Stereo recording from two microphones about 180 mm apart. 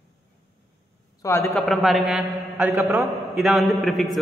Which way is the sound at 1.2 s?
15° left (ahead or behind).